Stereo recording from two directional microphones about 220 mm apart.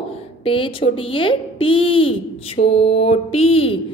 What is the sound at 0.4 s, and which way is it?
A woman's voice, 25° left (ahead or behind).